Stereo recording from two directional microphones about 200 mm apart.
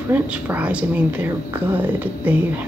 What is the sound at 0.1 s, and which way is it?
Speech, 10° right (ahead or behind).